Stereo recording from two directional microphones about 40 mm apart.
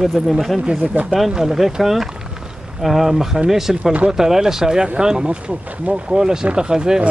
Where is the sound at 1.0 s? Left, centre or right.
Right.